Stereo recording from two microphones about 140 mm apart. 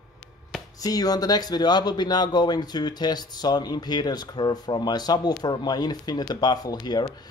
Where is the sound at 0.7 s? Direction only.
25° left (ahead or behind).